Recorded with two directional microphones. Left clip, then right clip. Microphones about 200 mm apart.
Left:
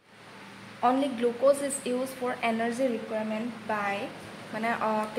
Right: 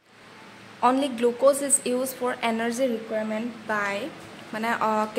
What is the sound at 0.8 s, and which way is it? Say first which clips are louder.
A woman's voice: right 4 dB; 30° right (ahead or behind).